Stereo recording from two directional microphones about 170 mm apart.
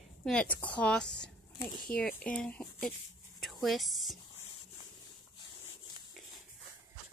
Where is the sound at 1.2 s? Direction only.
25° left (ahead or behind).